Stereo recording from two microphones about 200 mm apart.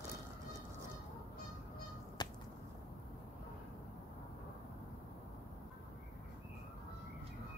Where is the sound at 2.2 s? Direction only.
20° left (ahead or behind).